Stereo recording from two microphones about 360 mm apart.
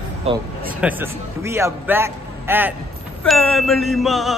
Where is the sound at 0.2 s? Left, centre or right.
Centre.